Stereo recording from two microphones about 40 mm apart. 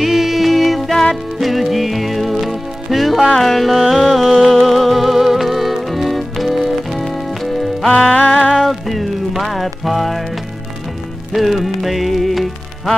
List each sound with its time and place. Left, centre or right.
0.0 s music: centre
7.9 s music: centre
8.4 s music: centre
11.3 s music: centre